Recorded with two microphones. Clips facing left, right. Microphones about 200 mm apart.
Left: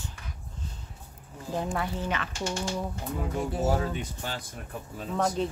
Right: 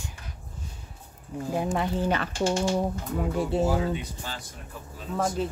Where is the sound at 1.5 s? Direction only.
20° right (ahead or behind).